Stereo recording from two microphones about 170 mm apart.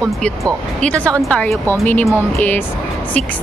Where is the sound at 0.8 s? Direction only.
5° left (ahead or behind).